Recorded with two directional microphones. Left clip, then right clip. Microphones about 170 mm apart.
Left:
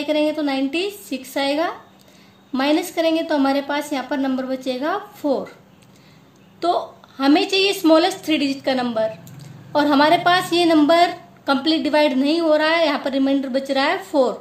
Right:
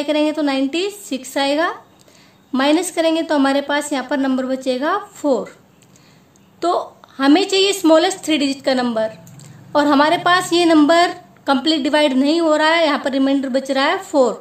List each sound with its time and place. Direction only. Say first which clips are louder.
0.0 s a woman's voice: right 2 dB; 40° right (ahead or behind)
6.6 s a woman's voice: right 2 dB; 35° right (ahead or behind)